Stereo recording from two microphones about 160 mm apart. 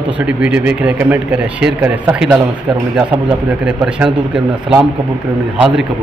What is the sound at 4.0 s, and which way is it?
A man's voice, 5° right (ahead or behind).